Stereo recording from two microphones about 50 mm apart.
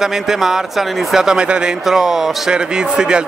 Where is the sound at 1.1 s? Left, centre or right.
Centre.